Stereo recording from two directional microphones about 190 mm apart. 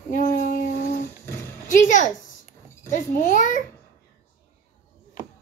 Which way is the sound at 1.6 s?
40° left (ahead or behind).